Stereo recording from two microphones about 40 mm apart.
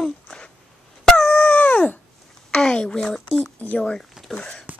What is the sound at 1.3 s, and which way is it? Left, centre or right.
Dog, left.